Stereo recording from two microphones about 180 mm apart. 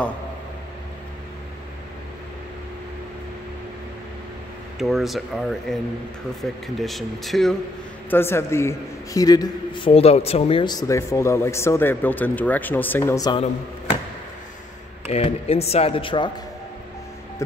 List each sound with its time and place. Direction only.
4.7 s speech: centre (ahead or behind)
8.1 s a man's voice: 15° left (ahead or behind)
15.0 s speech: 35° left (ahead or behind)